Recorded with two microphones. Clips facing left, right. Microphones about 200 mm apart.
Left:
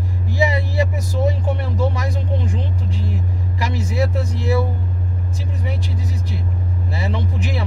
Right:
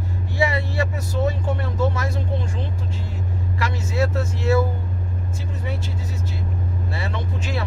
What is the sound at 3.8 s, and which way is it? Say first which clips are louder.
Speech: even; 15° left (ahead or behind).